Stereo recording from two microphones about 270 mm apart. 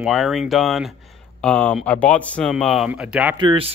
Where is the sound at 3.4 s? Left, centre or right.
Centre.